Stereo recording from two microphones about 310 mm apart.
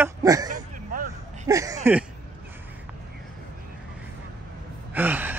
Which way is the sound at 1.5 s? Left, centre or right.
Centre.